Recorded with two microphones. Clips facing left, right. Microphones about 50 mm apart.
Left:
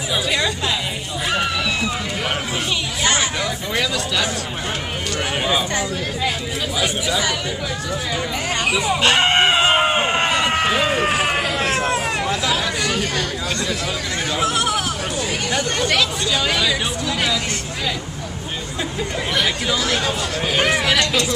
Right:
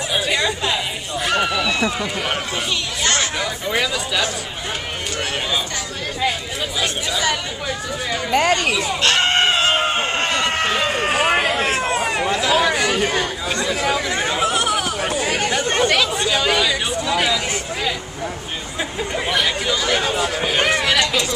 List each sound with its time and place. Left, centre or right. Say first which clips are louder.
0.1 s chatter: even; centre
1.2 s run: right 2 dB; centre
3.0 s a sound: left 1 dB; centre
3.7 s speech: right 1 dB; centre
6.8 s speech: left 2 dB; centre
8.3 s speech: right 8 dB; right
8.6 s chicken: left 1 dB; centre
11.5 s a sound: even; centre
12.9 s chatter: right 2 dB; centre
14.1 s speech: right 1 dB; centre
14.5 s a sound: right 1 dB; centre
15.6 s speech: right 3 dB; right
15.9 s speech: right 1 dB; centre
18.9 s speech: right 1 dB; centre